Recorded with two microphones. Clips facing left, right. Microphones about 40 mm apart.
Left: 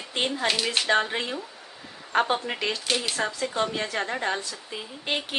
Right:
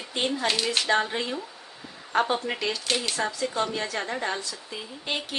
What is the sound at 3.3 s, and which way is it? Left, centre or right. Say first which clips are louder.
A woman's voice: left 1 dB; left.